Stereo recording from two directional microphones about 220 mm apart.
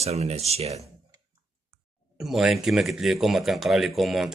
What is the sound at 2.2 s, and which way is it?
Speech, centre (ahead or behind).